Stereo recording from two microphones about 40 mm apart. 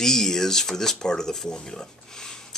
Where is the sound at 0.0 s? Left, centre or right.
Centre.